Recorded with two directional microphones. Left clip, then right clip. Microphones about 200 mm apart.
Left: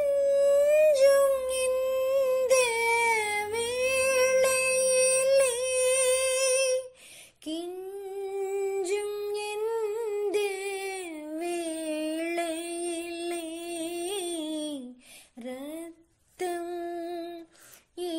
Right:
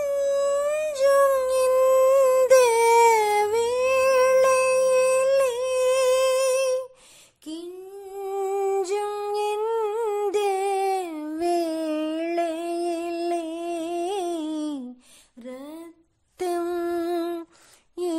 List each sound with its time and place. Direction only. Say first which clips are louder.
0.0 s music: even; 30° right (ahead or behind)
0.9 s music: right 1 dB; 10° right (ahead or behind)
1.7 s a sound: right 10 dB; 35° right (ahead or behind)
2.7 s a sound: right 8 dB; 25° right (ahead or behind)
7.4 s child singing: left 1 dB; centre (ahead or behind)
8.1 s humming: right 6 dB; 20° right (ahead or behind)
8.8 s music: right 4 dB; 20° right (ahead or behind)
9.4 s humming: right 7 dB; 15° right (ahead or behind)
10.3 s a sound: right 7 dB; 15° right (ahead or behind)
16.6 s humming: right 8 dB; 35° right (ahead or behind)